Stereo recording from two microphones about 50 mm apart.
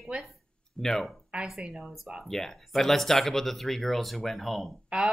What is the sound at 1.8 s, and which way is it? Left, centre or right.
Speech, centre.